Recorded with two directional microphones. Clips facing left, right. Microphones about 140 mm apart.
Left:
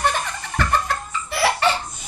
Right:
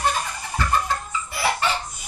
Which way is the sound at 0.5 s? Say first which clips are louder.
Left 1 dB; 75° left (ahead or behind).